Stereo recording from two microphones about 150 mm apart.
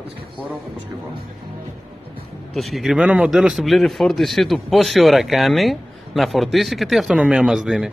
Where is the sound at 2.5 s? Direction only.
Centre (ahead or behind).